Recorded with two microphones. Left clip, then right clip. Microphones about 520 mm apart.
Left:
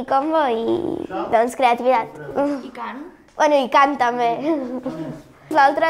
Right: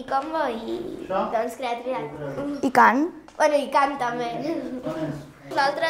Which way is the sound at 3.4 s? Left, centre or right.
Left.